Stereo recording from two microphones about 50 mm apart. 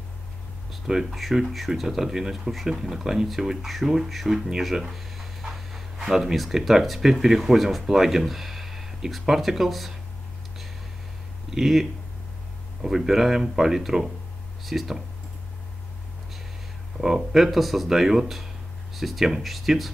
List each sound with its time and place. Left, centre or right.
0.9 s speech: centre
1.3 s speech: centre
11.5 s speech: centre
17.0 s speech: centre